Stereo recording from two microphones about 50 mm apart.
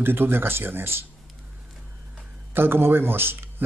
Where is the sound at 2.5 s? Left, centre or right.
Right.